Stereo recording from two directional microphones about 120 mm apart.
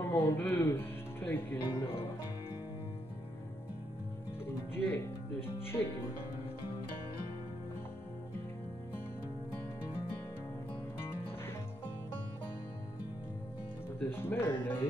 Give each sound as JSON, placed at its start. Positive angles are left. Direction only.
{"t": 0.0, "sound": "speech", "side_deg": 20}
{"t": 4.7, "sound": "speech", "side_deg": 20}
{"t": 13.9, "sound": "speech", "side_deg": 20}